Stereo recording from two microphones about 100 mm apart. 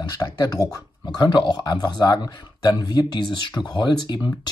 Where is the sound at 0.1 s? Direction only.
35° left (ahead or behind).